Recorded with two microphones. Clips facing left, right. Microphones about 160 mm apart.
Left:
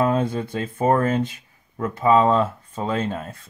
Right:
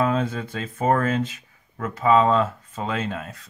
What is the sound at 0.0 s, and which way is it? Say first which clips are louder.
Speech: left 2 dB; 35° left (ahead or behind).